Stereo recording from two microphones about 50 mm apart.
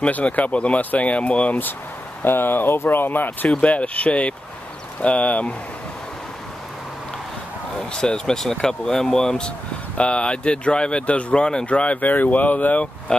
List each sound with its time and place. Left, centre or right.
0.0 s speech: left
2.2 s speech: left
3.4 s speech: left
7.9 s speech: centre; by 12.8 s left